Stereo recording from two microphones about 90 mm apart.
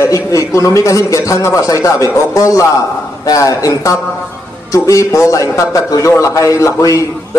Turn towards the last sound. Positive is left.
turn(degrees=35)  # may be behind; listen again after turning